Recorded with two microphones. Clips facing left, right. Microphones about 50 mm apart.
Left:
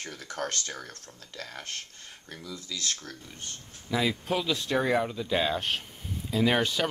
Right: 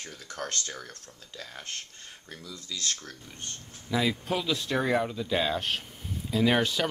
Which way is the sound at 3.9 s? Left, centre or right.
Centre.